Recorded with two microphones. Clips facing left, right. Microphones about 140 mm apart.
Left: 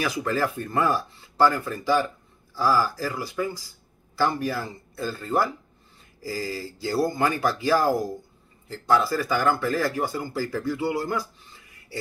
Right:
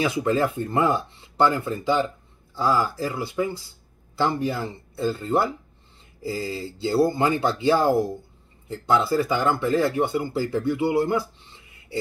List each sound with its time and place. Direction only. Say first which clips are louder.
0.0 s speech: right 3 dB; 20° right (ahead or behind)